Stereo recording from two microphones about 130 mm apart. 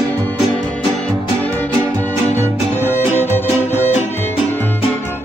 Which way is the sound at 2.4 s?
15° left (ahead or behind).